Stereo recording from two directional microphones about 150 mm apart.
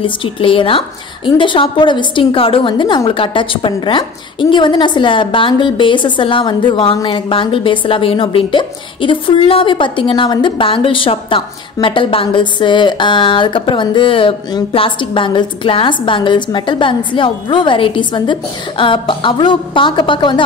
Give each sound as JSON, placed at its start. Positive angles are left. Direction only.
{"t": 0.0, "sound": "a woman's voice", "side_deg": 35}